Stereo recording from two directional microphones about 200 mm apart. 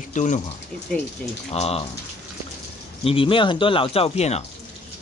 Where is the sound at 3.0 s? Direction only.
25° left (ahead or behind).